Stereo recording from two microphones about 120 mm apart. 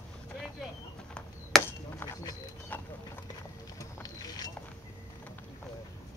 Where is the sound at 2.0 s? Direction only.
20° left (ahead or behind).